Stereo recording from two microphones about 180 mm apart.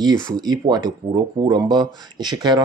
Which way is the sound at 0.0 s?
20° right (ahead or behind).